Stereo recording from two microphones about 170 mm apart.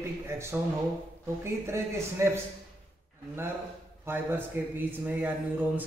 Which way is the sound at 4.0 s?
10° right (ahead or behind).